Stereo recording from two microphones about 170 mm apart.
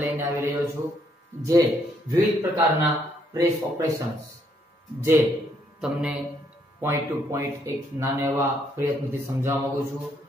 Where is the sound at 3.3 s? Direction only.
20° right (ahead or behind).